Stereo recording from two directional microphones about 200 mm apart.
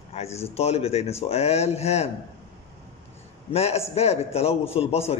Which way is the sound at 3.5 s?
30° left (ahead or behind).